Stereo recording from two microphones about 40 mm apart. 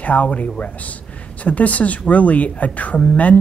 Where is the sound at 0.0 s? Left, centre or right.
Left.